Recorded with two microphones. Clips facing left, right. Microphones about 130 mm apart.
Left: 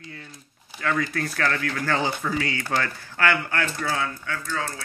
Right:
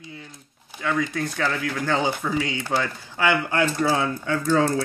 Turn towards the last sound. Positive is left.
turn(degrees=-35)  # may be behind; listen again after turning